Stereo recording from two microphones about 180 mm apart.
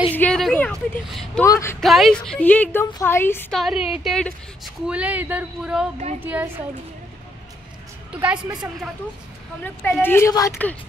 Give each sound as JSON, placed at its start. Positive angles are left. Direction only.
{"t": 0.1, "sound": "a sound", "side_deg": 5}
{"t": 1.4, "sound": "speech", "side_deg": 15}
{"t": 1.8, "sound": "speech", "side_deg": 0}
{"t": 3.5, "sound": "a woman's voice", "side_deg": 0}
{"t": 8.2, "sound": "a woman's voice", "side_deg": -10}
{"t": 9.6, "sound": "speech", "side_deg": 5}